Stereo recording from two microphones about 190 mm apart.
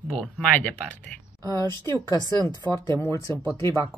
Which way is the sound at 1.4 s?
20° right (ahead or behind).